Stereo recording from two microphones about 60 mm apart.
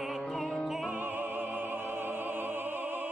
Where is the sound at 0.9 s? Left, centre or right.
Right.